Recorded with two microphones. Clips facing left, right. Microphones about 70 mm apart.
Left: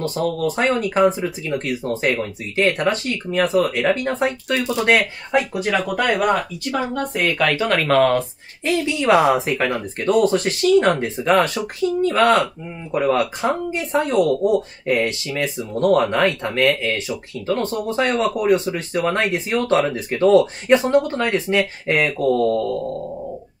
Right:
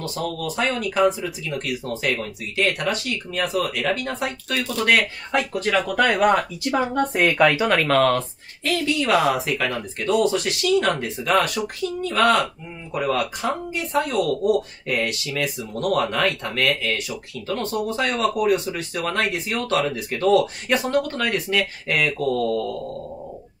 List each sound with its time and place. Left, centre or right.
0.0 s speech: left; by 6.3 s centre
6.3 s speech: centre
7.3 s speech: centre
8.6 s speech: left
9.9 s speech: left